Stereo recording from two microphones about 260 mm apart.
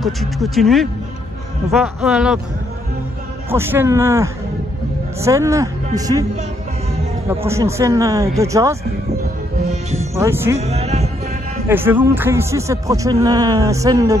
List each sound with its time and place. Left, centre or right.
0.0 s speech: centre
2.0 s speech: centre
3.4 s speech: centre
7.2 s speech: centre
9.7 s music: right
10.1 s speech: centre
10.6 s music: right
11.7 s speech: centre